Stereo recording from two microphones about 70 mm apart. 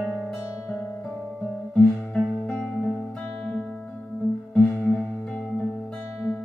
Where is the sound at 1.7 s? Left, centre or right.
Centre.